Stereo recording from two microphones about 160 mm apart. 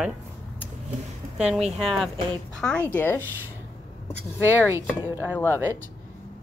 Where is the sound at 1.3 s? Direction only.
Centre (ahead or behind); by 3.2 s 15° left (ahead or behind).